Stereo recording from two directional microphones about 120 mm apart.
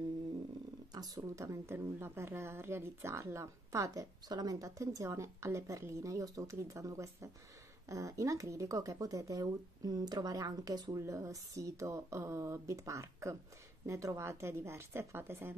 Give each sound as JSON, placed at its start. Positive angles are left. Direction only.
{"t": 0.9, "sound": "a woman's voice", "side_deg": -30}